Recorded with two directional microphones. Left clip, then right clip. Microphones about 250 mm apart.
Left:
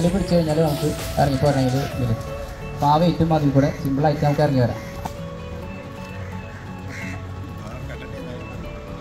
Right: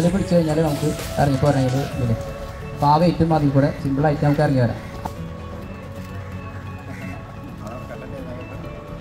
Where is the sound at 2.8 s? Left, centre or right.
Left.